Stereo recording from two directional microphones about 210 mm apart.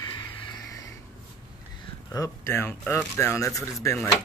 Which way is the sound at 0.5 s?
15° left (ahead or behind).